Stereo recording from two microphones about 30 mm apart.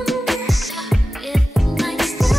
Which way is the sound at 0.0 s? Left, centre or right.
Centre.